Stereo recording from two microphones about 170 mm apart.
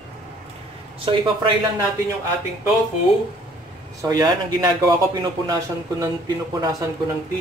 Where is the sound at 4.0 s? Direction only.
20° right (ahead or behind).